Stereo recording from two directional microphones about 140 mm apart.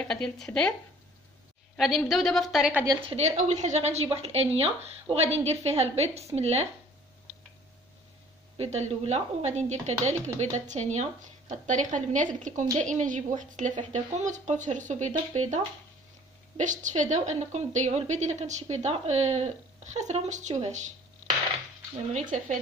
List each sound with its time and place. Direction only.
0.0 s a woman's voice: 5° left (ahead or behind)
1.8 s a woman's voice: centre (ahead or behind)
3.1 s speech: 50° right (ahead or behind)
8.5 s a woman's voice: 55° right (ahead or behind)